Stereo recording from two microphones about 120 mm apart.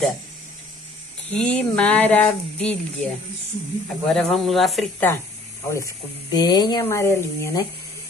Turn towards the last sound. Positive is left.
turn(degrees=20)  # may be behind; listen again after turning